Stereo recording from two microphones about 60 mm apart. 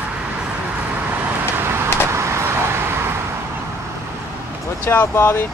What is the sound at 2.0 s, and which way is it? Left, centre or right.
Vehicle, right.